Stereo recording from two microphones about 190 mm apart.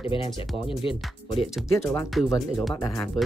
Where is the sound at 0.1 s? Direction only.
25° left (ahead or behind).